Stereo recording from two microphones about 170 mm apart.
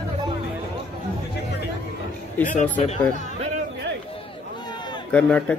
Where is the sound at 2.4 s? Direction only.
50° left (ahead or behind).